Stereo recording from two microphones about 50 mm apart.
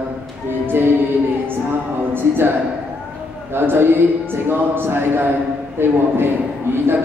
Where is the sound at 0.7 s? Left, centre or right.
Right.